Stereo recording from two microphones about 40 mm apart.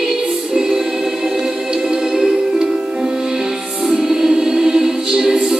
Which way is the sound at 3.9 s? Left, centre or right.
Centre.